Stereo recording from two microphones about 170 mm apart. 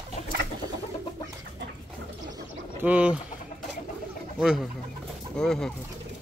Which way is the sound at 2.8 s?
10° right (ahead or behind).